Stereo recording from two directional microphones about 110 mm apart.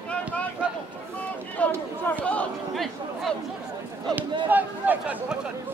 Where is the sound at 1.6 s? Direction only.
10° left (ahead or behind).